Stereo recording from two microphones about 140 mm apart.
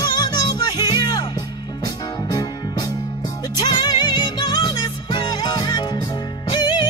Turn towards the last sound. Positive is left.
turn(degrees=30)  # may be behind; listen again after turning